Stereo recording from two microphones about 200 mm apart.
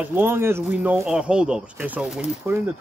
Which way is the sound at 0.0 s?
10° right (ahead or behind).